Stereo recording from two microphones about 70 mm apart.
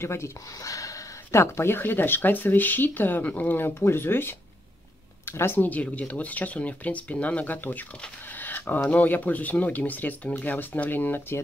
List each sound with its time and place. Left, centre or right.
0.0 s speech: left
0.6 s speech: left